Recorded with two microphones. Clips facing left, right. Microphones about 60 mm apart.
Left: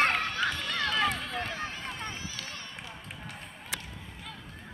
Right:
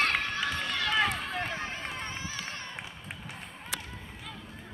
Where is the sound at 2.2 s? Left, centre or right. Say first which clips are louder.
Right 2 dB; right.